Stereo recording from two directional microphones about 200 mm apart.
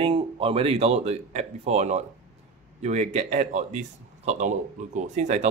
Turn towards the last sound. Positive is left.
turn(degrees=-35)  # may be behind; listen again after turning